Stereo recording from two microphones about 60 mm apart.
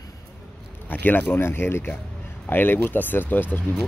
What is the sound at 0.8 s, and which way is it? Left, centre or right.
Speech, left.